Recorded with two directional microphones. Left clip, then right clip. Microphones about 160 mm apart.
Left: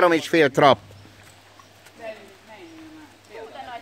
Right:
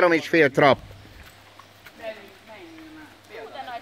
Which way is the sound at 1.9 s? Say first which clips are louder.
Right 3 dB; 30° left (ahead or behind).